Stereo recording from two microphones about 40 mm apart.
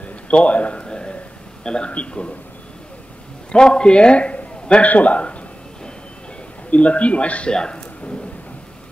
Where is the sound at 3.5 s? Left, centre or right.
Left.